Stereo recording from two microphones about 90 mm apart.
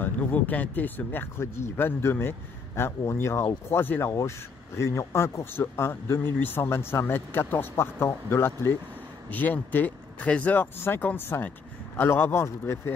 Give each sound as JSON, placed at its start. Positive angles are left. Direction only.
{"t": 0.0, "sound": "speech", "side_deg": 20}